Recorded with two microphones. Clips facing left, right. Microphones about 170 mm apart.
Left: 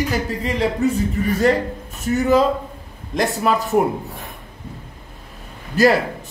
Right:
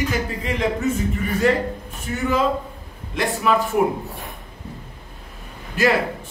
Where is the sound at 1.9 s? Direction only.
40° left (ahead or behind).